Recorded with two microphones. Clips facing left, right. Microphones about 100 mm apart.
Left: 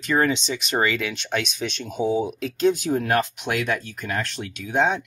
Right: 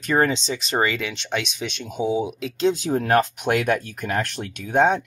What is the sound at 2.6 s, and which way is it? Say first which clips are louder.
Speech: even; 25° right (ahead or behind).